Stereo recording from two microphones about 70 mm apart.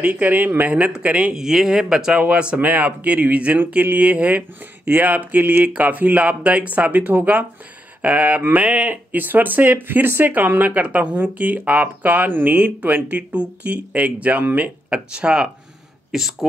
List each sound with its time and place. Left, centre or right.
0.0 s speech: right
1.3 s speech: centre